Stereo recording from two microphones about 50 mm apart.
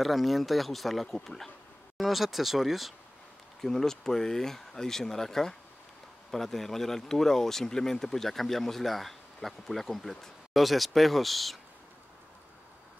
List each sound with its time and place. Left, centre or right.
0.0 s speech: centre
3.6 s speech: centre